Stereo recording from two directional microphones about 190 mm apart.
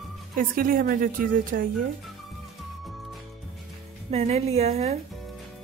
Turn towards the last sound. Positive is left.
turn(degrees=-35)  # may be behind; listen again after turning